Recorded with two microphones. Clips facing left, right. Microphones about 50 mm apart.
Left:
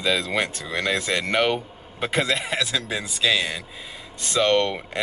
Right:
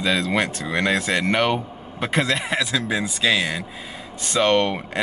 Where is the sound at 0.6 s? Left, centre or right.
Right.